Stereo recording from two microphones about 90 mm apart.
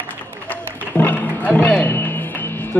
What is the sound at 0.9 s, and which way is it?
Music, 20° left (ahead or behind).